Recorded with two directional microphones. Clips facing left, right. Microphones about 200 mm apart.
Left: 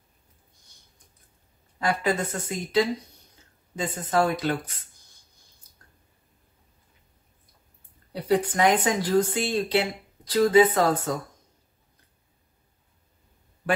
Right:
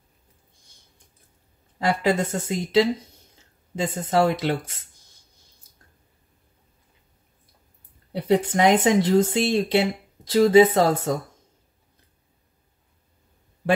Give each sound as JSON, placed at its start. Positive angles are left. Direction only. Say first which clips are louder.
{"t": 1.8, "sound": "speech", "louder": "right 3 dB", "side_deg": -25}
{"t": 8.1, "sound": "speech", "louder": "right 3 dB", "side_deg": -25}